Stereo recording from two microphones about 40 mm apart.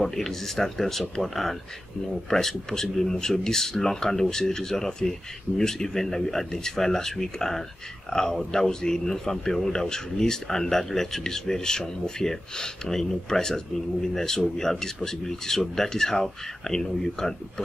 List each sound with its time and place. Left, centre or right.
0.0 s speech: centre